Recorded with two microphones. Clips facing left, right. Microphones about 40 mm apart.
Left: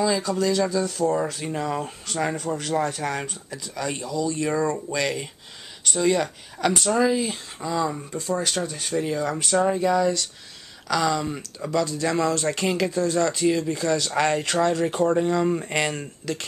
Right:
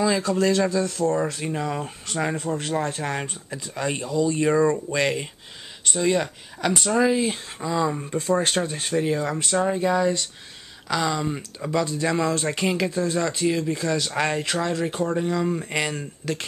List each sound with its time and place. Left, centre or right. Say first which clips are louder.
0.0 s speech: right 1 dB; centre
1.1 s speech: right 1 dB; centre
2.3 s speech: even; right
8.2 s speech: right 3 dB; right; by 9.3 s centre
9.4 s speech: left 1 dB; centre
9.8 s speech: even; right
10.9 s speech: left 1 dB; centre